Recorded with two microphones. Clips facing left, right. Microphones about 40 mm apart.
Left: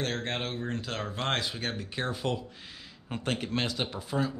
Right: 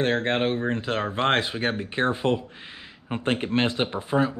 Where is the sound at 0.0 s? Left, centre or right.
Right.